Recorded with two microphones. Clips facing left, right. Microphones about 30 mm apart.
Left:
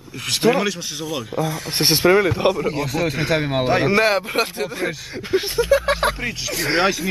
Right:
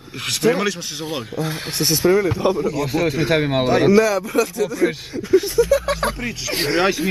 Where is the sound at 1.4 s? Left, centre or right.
Right.